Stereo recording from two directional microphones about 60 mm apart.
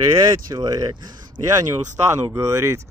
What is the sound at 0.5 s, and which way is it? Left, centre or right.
Speech, right.